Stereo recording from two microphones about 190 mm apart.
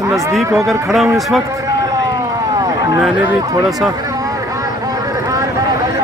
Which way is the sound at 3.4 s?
20° right (ahead or behind).